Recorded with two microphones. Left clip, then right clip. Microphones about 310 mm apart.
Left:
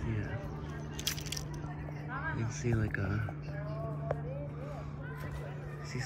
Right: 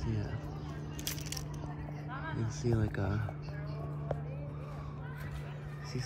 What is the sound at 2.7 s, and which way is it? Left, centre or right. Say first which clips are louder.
Speech: right 1 dB; centre.